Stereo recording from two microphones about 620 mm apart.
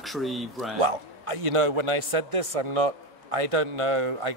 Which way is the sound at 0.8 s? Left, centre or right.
Right.